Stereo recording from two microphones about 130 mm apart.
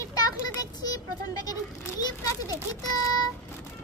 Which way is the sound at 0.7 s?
30° left (ahead or behind).